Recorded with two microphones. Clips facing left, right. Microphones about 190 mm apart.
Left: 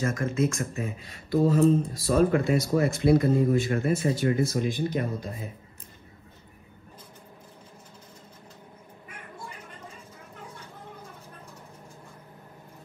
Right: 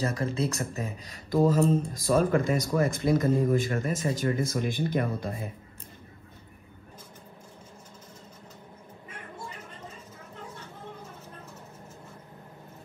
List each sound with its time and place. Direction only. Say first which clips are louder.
0.0 s a man's voice: left 2 dB; 35° right (ahead or behind); by 5.3 s 55° right (ahead or behind)